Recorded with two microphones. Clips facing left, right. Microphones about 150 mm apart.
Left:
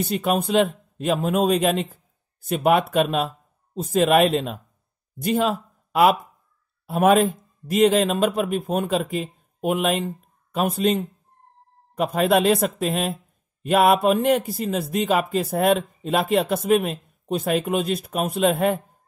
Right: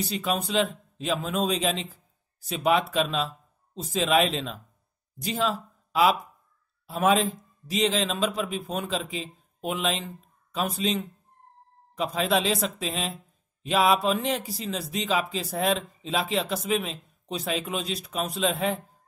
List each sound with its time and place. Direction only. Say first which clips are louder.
0.0 s a man's voice: left 6 dB; 55° left (ahead or behind)